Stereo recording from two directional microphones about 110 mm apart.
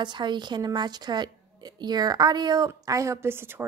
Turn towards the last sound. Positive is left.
turn(degrees=-20)  # may be behind; listen again after turning